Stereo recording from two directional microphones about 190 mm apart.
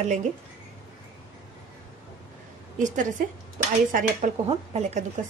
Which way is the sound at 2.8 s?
40° right (ahead or behind).